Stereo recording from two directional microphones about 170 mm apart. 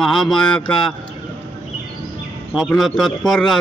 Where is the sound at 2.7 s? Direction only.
Centre (ahead or behind).